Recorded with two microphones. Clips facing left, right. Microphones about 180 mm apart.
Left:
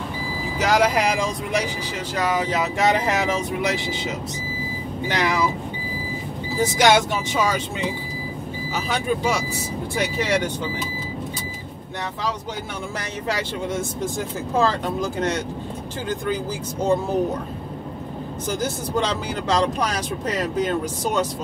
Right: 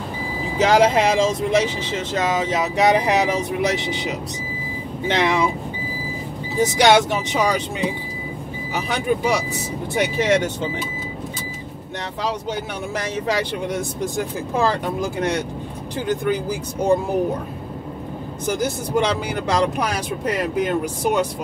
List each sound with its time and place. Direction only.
0.6 s speech: 30° right (ahead or behind)
6.6 s speech: 20° right (ahead or behind)
8.7 s speech: 15° right (ahead or behind)
14.6 s speech: 15° right (ahead or behind)
18.6 s speech: 15° right (ahead or behind)